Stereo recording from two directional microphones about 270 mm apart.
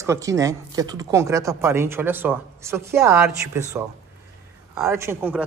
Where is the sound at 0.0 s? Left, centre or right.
Centre.